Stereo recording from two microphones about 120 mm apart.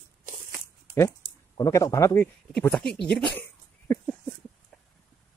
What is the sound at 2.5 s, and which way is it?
Speech, 5° left (ahead or behind).